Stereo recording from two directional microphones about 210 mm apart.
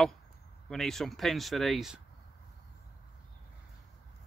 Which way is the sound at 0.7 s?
Centre (ahead or behind).